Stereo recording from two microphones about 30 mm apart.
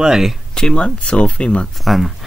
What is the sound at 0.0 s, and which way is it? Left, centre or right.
Speech, centre.